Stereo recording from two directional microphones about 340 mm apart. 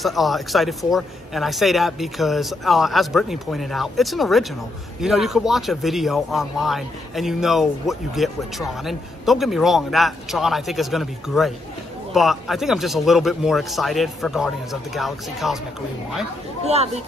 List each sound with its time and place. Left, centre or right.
0.0 s a man's voice: centre
16.6 s speech: centre